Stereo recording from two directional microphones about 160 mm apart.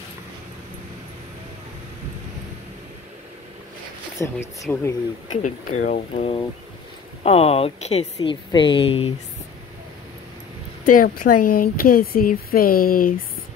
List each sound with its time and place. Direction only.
4.2 s speech: 15° left (ahead or behind)
5.3 s speech: 50° left (ahead or behind)
7.2 s speech: 40° left (ahead or behind)
10.8 s speech: 60° left (ahead or behind)